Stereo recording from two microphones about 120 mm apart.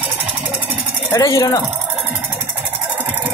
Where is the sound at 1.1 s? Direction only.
30° left (ahead or behind).